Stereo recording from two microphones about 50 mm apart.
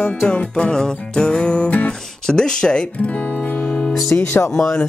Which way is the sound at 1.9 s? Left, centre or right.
Centre.